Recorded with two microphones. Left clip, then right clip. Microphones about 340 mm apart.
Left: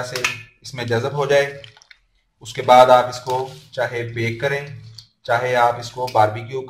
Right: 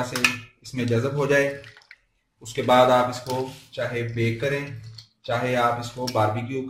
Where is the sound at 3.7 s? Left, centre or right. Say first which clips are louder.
Left 6 dB; left.